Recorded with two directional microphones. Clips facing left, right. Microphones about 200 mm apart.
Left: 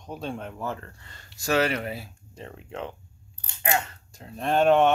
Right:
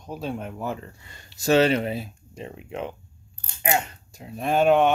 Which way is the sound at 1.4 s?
25° right (ahead or behind).